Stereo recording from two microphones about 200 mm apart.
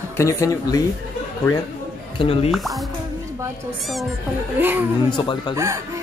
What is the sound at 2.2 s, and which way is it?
Speech, 25° left (ahead or behind).